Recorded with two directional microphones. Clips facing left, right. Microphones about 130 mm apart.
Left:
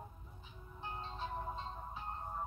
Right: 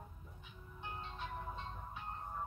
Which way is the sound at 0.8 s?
30° left (ahead or behind).